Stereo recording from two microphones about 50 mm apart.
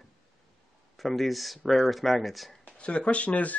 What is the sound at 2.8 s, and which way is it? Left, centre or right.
Speech, left.